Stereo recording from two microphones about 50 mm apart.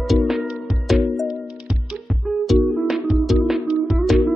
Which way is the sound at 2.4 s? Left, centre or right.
Centre.